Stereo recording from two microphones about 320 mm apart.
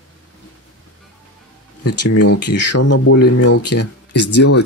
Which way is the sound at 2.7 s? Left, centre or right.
Left.